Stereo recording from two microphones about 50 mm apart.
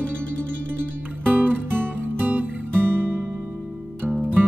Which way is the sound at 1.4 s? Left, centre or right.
Right.